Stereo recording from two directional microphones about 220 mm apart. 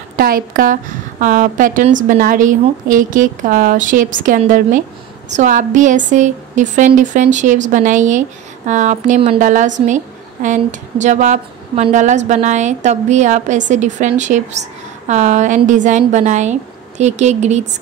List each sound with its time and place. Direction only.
0.1 s speech: 40° right (ahead or behind)